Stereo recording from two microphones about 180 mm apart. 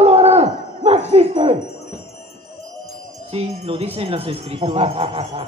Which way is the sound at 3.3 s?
35° right (ahead or behind).